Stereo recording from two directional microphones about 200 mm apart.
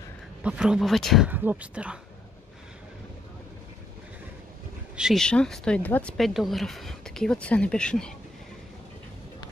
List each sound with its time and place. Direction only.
0.4 s speech: 5° right (ahead or behind)
4.9 s speech: centre (ahead or behind)